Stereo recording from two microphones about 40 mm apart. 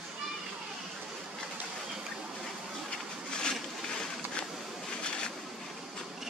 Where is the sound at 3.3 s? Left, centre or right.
Centre.